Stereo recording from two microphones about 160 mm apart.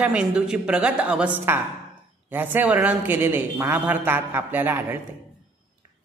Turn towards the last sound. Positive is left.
turn(degrees=-15)  # may be behind; listen again after turning